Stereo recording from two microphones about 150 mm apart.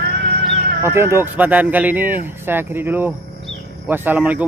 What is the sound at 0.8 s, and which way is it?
Speech, 15° right (ahead or behind).